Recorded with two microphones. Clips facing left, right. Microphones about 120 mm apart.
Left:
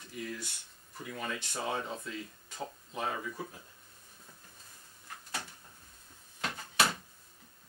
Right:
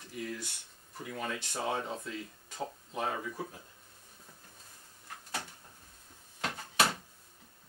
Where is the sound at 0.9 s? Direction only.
40° right (ahead or behind).